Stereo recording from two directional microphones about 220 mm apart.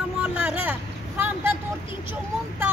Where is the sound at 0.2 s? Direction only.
5° right (ahead or behind).